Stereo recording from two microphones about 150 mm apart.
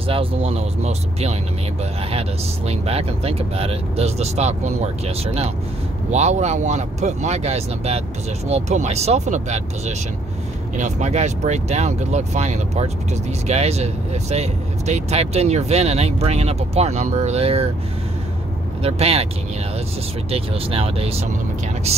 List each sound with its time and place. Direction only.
0.0 s speech: 40° right (ahead or behind)
18.8 s speech: 45° right (ahead or behind)
20.2 s speech: 40° right (ahead or behind)